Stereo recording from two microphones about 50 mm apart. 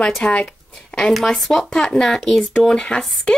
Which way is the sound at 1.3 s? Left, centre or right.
Centre.